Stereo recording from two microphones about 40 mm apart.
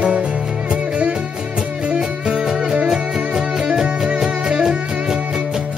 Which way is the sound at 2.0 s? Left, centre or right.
Centre.